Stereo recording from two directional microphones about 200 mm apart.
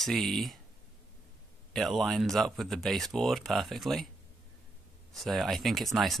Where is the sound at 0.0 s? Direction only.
Centre (ahead or behind).